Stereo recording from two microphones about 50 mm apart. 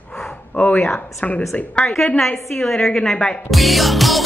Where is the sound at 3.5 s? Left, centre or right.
Centre.